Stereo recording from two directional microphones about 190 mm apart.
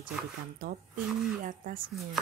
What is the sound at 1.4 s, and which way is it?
Speech, 45° right (ahead or behind).